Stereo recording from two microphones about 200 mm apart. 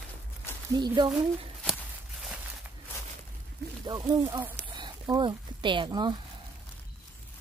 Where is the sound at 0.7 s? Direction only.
20° right (ahead or behind).